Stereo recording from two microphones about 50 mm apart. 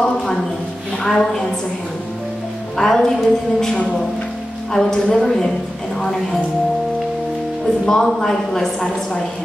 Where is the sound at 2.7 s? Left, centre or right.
Centre.